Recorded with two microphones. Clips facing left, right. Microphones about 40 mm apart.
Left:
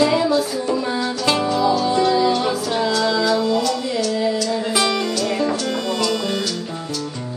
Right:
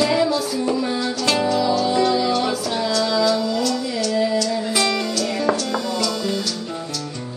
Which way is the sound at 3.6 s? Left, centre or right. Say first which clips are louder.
Left 1 dB; centre.